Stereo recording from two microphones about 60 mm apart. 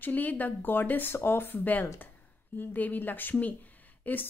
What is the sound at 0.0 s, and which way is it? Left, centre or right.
A woman's voice, left.